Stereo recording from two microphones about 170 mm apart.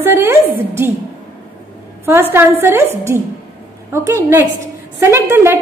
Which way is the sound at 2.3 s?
10° right (ahead or behind).